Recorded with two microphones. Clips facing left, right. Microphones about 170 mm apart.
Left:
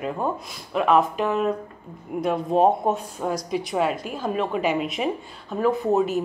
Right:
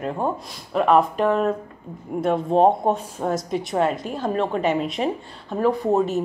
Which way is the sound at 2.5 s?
30° right (ahead or behind).